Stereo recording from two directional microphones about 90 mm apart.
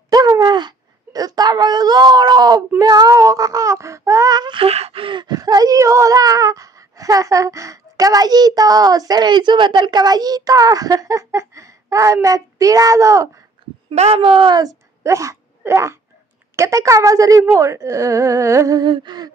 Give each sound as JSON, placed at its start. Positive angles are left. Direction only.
{"t": 0.1, "sound": "a sound", "side_deg": -45}
{"t": 4.4, "sound": "speech", "side_deg": -75}
{"t": 13.8, "sound": "speech", "side_deg": -85}
{"t": 14.5, "sound": "a woman's voice", "side_deg": -45}
{"t": 18.8, "sound": "speech", "side_deg": -55}